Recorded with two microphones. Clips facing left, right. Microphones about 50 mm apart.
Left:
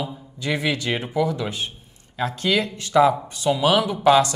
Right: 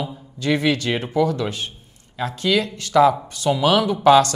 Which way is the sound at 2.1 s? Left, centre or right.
Left.